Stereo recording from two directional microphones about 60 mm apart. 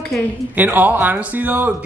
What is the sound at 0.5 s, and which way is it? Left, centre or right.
A woman's voice, right.